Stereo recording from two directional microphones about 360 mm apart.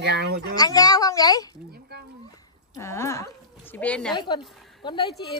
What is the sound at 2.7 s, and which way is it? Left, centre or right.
A woman's voice, centre.